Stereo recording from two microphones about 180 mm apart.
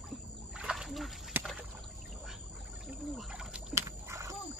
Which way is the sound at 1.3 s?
10° right (ahead or behind).